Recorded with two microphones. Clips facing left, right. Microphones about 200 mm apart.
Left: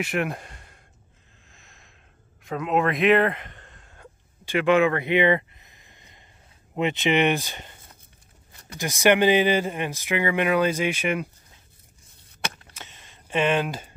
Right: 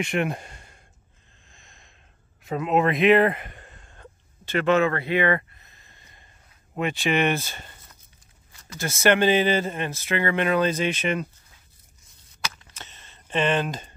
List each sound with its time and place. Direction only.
0.0 s speech: centre (ahead or behind)
1.5 s gasp: centre (ahead or behind)
2.4 s a man's voice: 5° right (ahead or behind)
3.8 s a sound: 5° left (ahead or behind)
6.7 s a man's voice: 20° left (ahead or behind)
12.7 s a sound: 10° left (ahead or behind)